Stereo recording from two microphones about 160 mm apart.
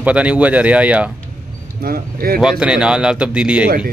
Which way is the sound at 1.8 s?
65° right (ahead or behind).